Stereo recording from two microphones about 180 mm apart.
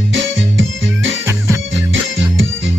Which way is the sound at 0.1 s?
90° right.